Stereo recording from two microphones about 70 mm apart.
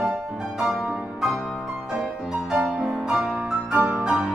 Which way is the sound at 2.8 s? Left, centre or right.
Centre.